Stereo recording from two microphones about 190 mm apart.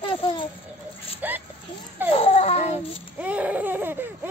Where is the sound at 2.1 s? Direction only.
30° left (ahead or behind).